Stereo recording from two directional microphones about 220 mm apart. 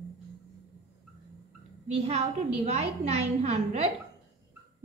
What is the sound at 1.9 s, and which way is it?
A woman's voice, 30° right (ahead or behind).